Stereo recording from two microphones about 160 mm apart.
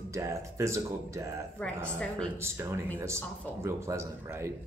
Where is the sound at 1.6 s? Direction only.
5° left (ahead or behind).